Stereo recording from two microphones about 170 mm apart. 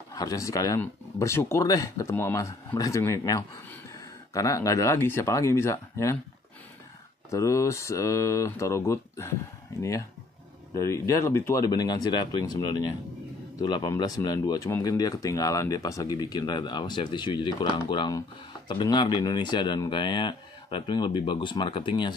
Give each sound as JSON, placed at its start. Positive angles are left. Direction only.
{"t": 0.1, "sound": "speech", "side_deg": 20}
{"t": 7.2, "sound": "speech", "side_deg": 20}